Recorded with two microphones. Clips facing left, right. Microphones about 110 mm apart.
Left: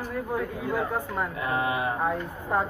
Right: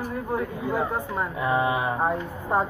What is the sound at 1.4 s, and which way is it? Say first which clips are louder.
Speech: right 4 dB; 25° right (ahead or behind).